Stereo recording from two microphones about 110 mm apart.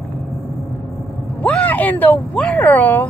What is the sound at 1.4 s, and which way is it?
Speech, 10° left (ahead or behind).